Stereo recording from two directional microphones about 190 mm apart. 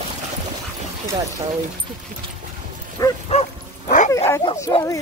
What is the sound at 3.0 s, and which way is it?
Bow-wow, 20° left (ahead or behind).